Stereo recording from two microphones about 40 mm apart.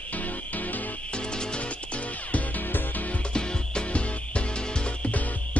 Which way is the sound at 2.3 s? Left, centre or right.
Left.